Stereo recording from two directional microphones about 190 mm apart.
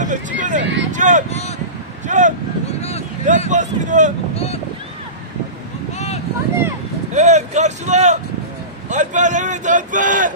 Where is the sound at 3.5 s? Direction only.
40° right (ahead or behind).